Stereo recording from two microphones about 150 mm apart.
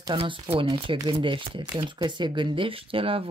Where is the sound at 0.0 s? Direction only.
35° right (ahead or behind).